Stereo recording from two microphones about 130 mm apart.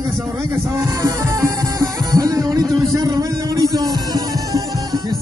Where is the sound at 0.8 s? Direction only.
20° right (ahead or behind).